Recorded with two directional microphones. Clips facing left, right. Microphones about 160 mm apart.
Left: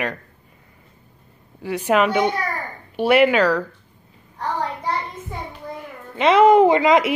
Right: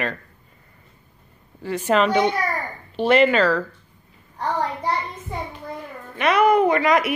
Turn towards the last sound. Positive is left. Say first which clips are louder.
# left 4 dB
turn(degrees=25)  # may be behind; listen again after turning